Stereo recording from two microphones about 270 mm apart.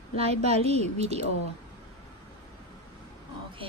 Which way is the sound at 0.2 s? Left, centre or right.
Right.